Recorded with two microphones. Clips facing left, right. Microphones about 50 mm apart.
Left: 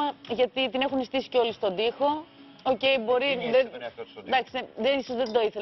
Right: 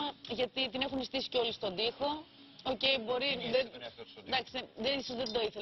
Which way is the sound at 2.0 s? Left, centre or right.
Left.